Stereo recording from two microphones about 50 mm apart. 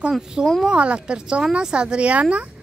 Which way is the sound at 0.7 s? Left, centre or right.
Right.